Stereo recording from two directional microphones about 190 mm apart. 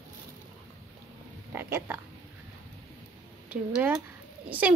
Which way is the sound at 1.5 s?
10° right (ahead or behind).